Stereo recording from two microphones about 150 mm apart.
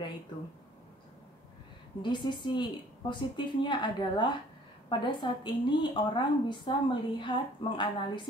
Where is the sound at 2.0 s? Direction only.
30° left (ahead or behind).